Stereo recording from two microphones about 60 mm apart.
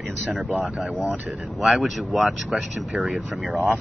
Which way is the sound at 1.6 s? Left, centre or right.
Centre.